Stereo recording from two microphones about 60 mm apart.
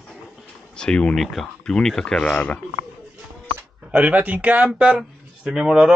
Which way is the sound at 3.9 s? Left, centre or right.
Right.